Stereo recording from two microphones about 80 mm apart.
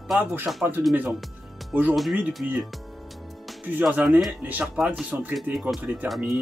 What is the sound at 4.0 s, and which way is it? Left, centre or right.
Speech, right.